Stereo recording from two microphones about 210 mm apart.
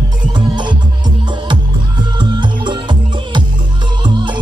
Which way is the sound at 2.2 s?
20° right (ahead or behind).